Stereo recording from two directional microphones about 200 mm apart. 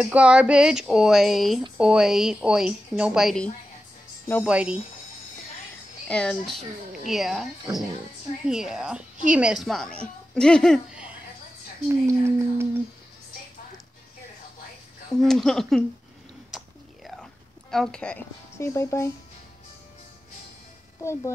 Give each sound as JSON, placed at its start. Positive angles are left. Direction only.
{"t": 0.0, "sound": "a woman's voice", "side_deg": -5}
{"t": 4.5, "sound": "a woman's voice", "side_deg": -5}
{"t": 6.0, "sound": "a woman's voice", "side_deg": 5}
{"t": 15.2, "sound": "a woman's voice", "side_deg": 0}
{"t": 16.5, "sound": "a sound", "side_deg": 0}
{"t": 21.0, "sound": "speech", "side_deg": 15}